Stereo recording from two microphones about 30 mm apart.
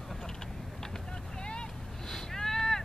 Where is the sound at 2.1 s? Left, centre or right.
Centre.